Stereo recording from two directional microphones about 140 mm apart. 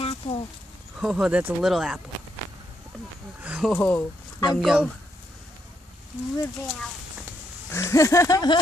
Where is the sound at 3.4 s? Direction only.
5° right (ahead or behind).